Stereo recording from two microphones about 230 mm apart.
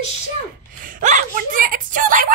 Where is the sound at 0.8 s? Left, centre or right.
Right.